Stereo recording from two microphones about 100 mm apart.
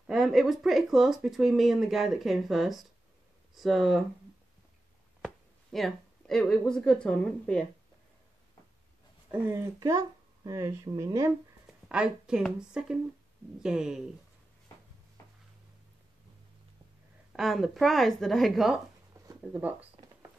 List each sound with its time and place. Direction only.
0.0 s speech: centre (ahead or behind)
5.7 s speech: 5° left (ahead or behind)
9.3 s speech: 25° right (ahead or behind)
11.6 s a sound: 10° right (ahead or behind)
12.5 s speech: 5° right (ahead or behind)
17.3 s speech: centre (ahead or behind)
19.1 s a sound: 35° right (ahead or behind)
19.5 s speech: 15° right (ahead or behind)